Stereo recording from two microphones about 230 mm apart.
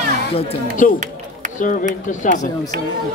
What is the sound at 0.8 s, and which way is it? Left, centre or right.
Speech, left.